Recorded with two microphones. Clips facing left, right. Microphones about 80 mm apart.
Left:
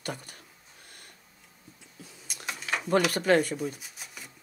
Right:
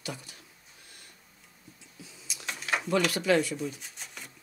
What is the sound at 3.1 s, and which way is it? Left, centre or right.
Speech, left.